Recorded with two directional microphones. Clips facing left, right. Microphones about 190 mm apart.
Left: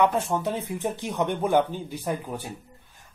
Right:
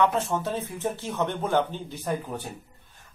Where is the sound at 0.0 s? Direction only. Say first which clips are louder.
Left 1 dB; 10° left (ahead or behind).